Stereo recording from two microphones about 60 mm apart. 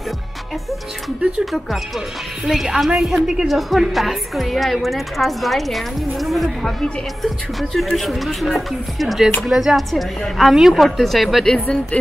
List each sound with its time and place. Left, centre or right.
1.4 s a woman's voice: centre
11.5 s speech: centre